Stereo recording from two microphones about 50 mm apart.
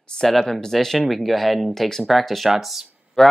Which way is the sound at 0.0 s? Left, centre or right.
Centre.